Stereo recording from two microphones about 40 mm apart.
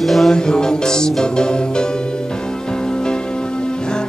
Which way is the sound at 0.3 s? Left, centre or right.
Centre.